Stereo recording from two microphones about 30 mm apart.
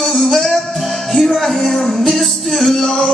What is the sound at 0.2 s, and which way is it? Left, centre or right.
Music, centre.